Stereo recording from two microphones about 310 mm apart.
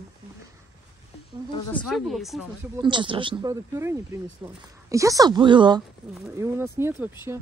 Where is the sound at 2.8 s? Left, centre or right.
Centre.